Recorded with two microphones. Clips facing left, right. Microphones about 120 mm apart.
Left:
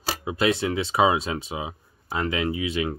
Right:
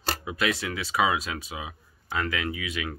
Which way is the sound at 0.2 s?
25° left (ahead or behind).